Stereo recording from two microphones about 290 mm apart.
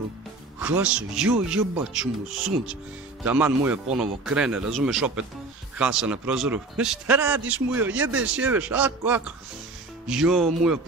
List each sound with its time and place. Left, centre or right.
0.6 s speech: centre